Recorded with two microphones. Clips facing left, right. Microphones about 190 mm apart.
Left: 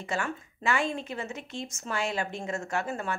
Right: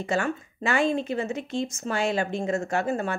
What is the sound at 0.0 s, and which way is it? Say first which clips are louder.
Speech: right 6 dB; 35° right (ahead or behind).